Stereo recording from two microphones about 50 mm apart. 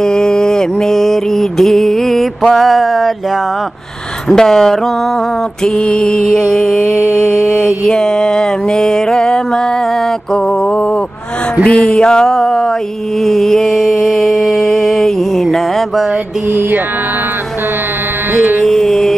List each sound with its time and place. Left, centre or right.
0.0 s mantra: centre
4.3 s mantra: centre
11.6 s music: left
11.9 s mantra: centre
16.4 s mantra: right
18.3 s music: right
18.6 s mantra: centre